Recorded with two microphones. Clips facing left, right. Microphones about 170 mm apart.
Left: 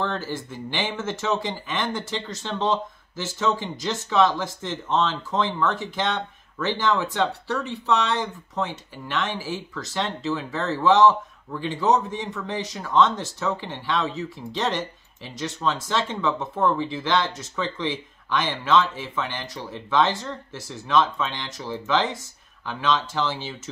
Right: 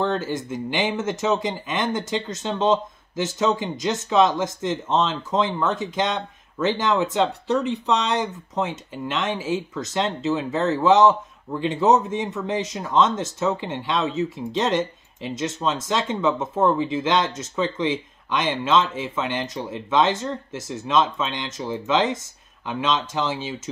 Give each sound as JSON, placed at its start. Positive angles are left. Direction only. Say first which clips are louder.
{"t": 0.0, "sound": "speech", "louder": "right 4 dB", "side_deg": -20}